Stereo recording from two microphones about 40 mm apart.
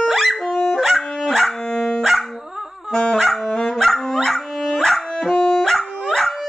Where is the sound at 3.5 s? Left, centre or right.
Centre.